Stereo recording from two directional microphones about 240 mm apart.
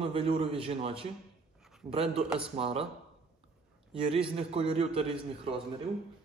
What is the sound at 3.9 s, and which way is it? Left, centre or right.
A man's voice, right.